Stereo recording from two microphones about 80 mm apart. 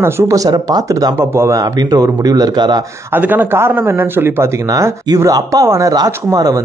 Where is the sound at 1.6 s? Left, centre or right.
Right.